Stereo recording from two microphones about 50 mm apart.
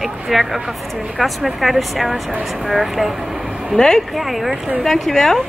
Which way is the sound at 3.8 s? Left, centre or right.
Centre.